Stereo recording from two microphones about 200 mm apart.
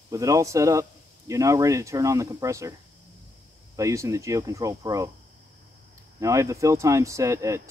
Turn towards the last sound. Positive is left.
turn(degrees=-15)  # may be behind; listen again after turning